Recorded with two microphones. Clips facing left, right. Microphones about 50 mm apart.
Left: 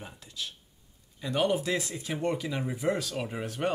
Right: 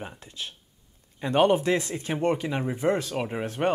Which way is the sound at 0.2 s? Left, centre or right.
Right.